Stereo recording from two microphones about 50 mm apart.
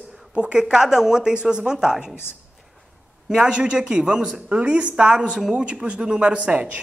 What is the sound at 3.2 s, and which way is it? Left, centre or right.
A woman's voice, centre.